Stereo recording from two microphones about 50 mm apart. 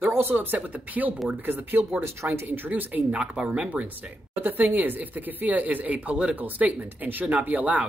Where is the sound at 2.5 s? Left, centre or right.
Right.